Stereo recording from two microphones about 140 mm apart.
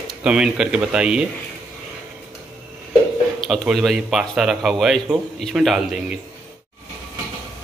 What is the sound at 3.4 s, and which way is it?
Speech, centre (ahead or behind).